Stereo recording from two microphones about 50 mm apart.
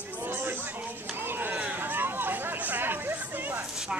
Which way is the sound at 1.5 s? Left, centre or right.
Right.